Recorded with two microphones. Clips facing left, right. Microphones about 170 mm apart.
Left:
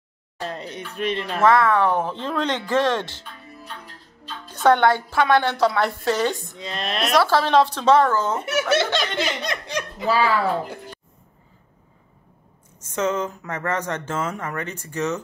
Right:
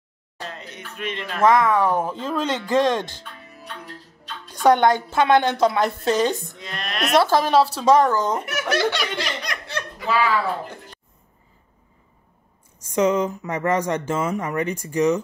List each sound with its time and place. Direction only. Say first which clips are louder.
0.5 s speech: left 5 dB; 35° left (ahead or behind)
1.4 s speech: even; 15° right (ahead or behind)
4.5 s speech: right 1 dB; 10° right (ahead or behind)
6.7 s laughter: left 2 dB; 25° left (ahead or behind)
7.2 s speech: right 1 dB; 15° right (ahead or behind)
8.5 s laughter: left 2 dB; 25° left (ahead or behind)
9.7 s speech: left 2 dB; 15° left (ahead or behind)
10.0 s speech: left 1 dB; 35° left (ahead or behind)
12.7 s speech: right 4 dB; 15° right (ahead or behind)